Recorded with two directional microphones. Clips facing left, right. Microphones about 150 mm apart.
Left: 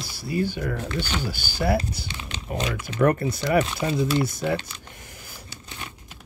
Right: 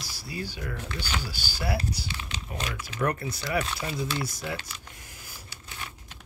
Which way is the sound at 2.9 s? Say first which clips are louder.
Left 8 dB; 55° left (ahead or behind).